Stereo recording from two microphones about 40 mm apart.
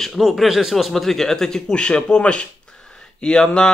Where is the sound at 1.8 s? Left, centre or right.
Left.